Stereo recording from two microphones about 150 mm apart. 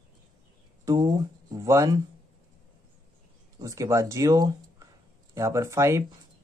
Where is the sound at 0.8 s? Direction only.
25° right (ahead or behind).